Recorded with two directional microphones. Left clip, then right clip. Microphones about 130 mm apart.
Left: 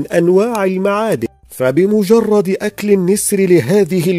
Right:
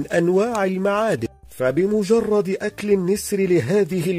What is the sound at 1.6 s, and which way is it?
Speech, 35° left (ahead or behind).